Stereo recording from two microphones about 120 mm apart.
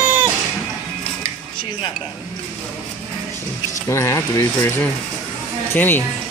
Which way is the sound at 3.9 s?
20° left (ahead or behind).